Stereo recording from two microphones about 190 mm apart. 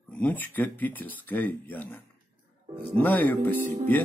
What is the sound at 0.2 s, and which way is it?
Speech, 10° left (ahead or behind).